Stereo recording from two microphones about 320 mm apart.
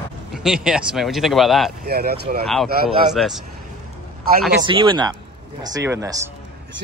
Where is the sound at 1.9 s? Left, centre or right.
Right.